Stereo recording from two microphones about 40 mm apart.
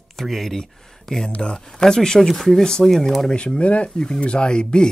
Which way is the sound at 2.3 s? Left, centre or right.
Centre.